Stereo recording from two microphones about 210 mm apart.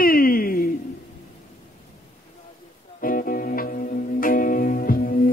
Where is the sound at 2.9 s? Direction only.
40° left (ahead or behind).